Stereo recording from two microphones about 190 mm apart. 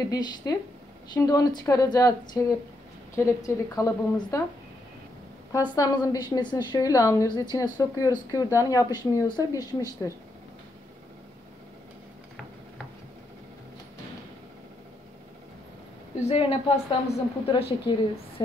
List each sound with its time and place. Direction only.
0.1 s a woman's voice: 20° left (ahead or behind)
5.5 s a woman's voice: 20° left (ahead or behind)
16.2 s a woman's voice: 30° left (ahead or behind)